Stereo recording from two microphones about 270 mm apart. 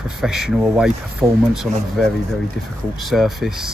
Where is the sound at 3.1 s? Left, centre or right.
Centre.